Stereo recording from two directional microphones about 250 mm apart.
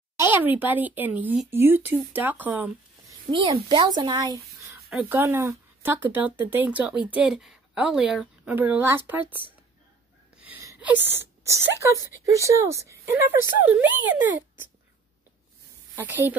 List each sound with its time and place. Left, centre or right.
0.2 s speech: centre
3.3 s a woman's voice: centre
10.3 s gasp: centre
11.4 s speech: centre
16.0 s speech: centre